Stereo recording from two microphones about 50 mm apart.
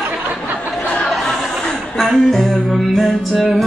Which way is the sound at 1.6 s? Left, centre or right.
Centre.